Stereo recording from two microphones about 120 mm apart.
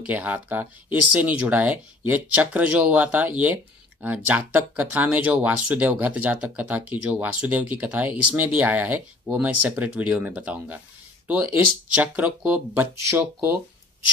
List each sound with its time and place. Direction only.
0.0 s speech: 15° right (ahead or behind)